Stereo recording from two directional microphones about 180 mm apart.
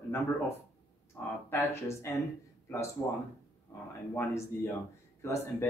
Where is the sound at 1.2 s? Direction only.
10° left (ahead or behind).